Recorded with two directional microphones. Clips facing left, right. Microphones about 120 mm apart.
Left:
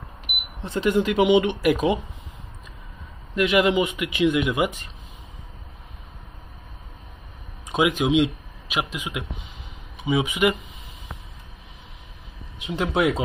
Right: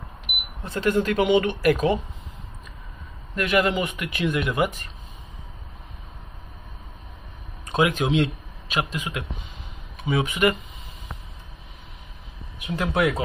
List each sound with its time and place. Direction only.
0.7 s speech: 20° left (ahead or behind)
3.3 s speech: 15° left (ahead or behind)
7.6 s speech: 15° left (ahead or behind)
12.5 s speech: 20° left (ahead or behind)